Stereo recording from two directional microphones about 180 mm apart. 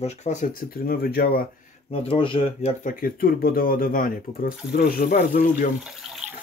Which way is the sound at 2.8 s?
55° left (ahead or behind).